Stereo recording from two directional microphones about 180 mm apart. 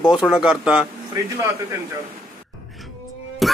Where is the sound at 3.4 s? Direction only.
Centre (ahead or behind).